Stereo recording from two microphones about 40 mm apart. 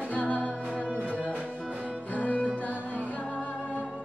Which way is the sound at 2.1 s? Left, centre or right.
Left.